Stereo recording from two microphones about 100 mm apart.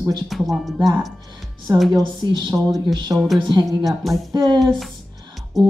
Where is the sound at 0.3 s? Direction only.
Centre (ahead or behind).